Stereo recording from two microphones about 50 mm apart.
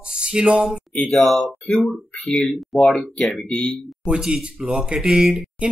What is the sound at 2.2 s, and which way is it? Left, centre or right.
Speech, centre.